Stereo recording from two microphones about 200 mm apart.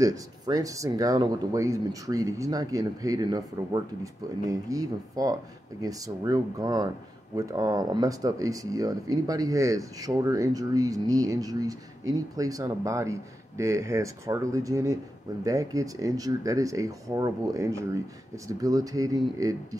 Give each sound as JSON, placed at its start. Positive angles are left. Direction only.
{"t": 0.0, "sound": "speech", "side_deg": -15}